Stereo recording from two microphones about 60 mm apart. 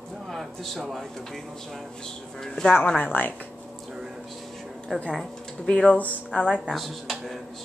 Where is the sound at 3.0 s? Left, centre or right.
Left.